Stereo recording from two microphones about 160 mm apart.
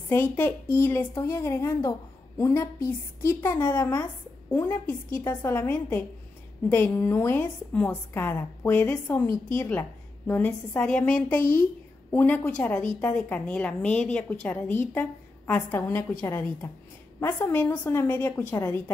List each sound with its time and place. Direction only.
0.1 s a woman's voice: 15° left (ahead or behind)